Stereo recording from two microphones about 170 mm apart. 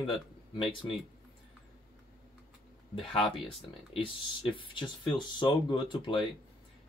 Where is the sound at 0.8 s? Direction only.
20° left (ahead or behind).